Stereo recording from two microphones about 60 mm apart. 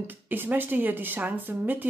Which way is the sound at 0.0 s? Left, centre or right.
Right.